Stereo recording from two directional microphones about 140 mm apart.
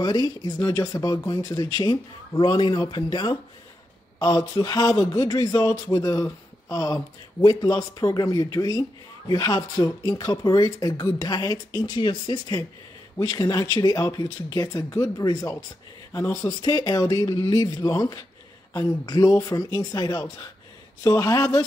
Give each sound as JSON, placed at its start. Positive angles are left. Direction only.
{"t": 0.0, "sound": "speech", "side_deg": 30}